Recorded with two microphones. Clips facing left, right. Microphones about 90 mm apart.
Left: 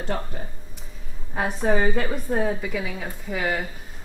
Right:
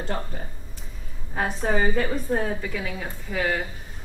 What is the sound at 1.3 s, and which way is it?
A woman's voice, 5° left (ahead or behind).